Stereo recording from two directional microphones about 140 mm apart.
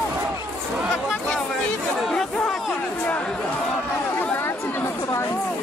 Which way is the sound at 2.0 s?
5° left (ahead or behind).